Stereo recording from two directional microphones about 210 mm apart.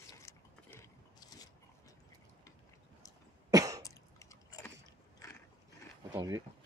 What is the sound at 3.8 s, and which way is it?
Chewing, 15° left (ahead or behind).